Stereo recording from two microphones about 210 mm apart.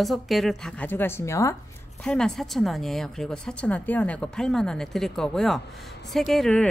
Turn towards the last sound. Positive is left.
turn(degrees=5)  # may be behind; listen again after turning